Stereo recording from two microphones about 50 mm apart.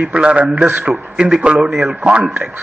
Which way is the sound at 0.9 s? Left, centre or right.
Centre.